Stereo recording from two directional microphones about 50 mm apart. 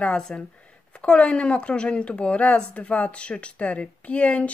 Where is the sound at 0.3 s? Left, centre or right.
Centre.